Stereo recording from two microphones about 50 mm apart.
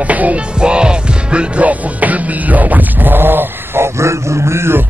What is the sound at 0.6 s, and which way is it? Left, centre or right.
Music, centre.